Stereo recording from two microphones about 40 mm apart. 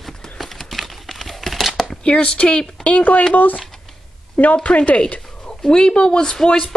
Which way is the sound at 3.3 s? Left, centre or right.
Left.